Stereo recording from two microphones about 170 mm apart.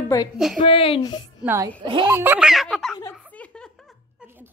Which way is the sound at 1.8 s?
30° right (ahead or behind).